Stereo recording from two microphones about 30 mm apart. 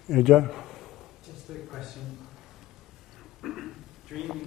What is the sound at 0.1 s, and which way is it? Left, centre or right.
Speech, centre.